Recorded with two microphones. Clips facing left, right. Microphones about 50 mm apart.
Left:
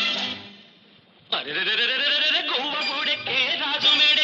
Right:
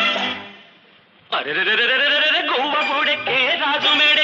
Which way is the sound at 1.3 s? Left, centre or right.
Right.